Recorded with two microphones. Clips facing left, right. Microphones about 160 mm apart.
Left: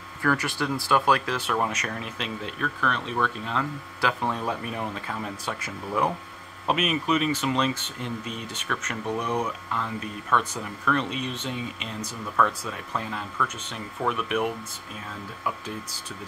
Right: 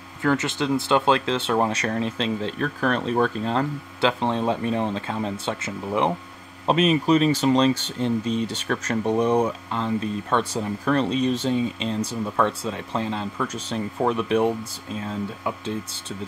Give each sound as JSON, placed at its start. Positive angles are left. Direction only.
{"t": 0.2, "sound": "speech", "side_deg": -20}
{"t": 4.0, "sound": "speech", "side_deg": -25}